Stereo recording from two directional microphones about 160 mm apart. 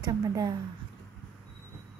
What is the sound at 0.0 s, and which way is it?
Speech, 25° right (ahead or behind).